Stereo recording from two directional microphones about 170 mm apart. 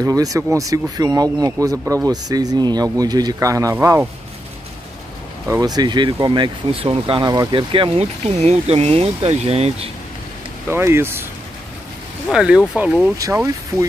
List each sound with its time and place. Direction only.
0.0 s speech: 20° right (ahead or behind)
5.5 s speech: 20° right (ahead or behind)
10.7 s speech: 15° right (ahead or behind)
12.3 s speech: 5° right (ahead or behind)